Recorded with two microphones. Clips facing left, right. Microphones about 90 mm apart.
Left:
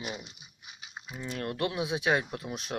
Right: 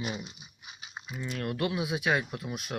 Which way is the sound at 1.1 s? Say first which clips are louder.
Right 1 dB; 30° left (ahead or behind).